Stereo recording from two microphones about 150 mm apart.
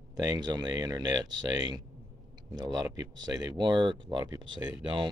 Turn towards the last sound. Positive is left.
turn(degrees=-30)  # may be behind; listen again after turning